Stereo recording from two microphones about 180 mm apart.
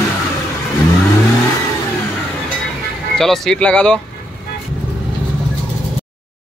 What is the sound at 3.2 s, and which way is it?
Speech, 5° left (ahead or behind).